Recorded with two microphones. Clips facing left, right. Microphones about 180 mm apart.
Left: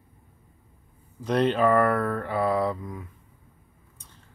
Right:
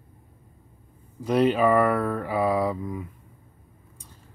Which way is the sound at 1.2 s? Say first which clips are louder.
Right 2 dB; 5° right (ahead or behind).